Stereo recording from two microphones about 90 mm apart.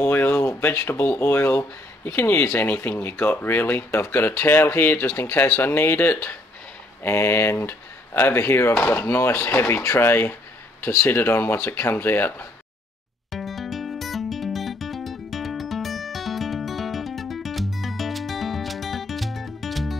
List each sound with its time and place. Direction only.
0.0 s a sound: 20° left (ahead or behind)
0.6 s speech: 25° left (ahead or behind)
13.3 s music: centre (ahead or behind)